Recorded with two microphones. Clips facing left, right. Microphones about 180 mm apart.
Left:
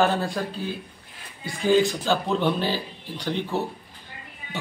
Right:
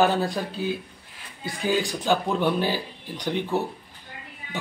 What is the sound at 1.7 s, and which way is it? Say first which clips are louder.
A man's voice: left 3 dB; 15° right (ahead or behind).